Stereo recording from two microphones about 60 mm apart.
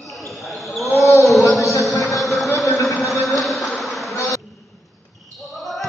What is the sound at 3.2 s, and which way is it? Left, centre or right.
Insect, centre.